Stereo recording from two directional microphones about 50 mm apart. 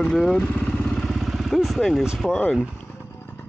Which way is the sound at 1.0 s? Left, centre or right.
Centre.